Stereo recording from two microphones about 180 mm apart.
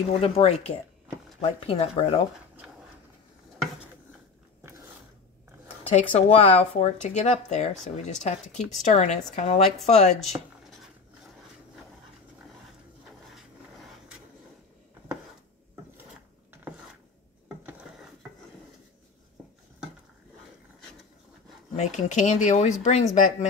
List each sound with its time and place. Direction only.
0.2 s speech: 35° left (ahead or behind)
5.9 s speech: 35° left (ahead or behind)
8.5 s speech: 5° left (ahead or behind)
8.8 s speech: 40° left (ahead or behind)
13.3 s a sound: centre (ahead or behind)
21.7 s speech: 40° left (ahead or behind)